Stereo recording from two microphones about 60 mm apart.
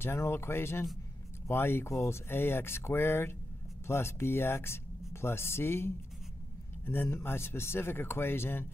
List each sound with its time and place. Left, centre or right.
0.0 s speech: left
1.9 s speech: left